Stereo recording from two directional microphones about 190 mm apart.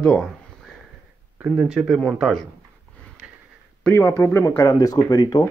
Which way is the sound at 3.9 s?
10° left (ahead or behind).